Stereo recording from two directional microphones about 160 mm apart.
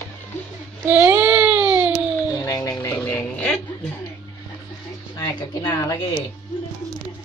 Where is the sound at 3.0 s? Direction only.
10° left (ahead or behind).